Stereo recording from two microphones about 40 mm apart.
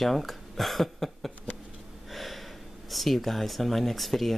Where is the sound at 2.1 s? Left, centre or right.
Centre.